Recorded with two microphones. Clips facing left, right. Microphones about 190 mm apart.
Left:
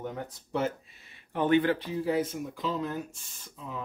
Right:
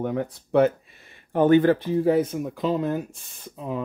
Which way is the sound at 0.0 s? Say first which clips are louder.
Right 10 dB; 60° right (ahead or behind).